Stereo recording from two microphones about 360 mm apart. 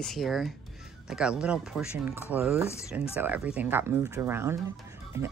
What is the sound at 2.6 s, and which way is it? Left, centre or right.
Speech, centre.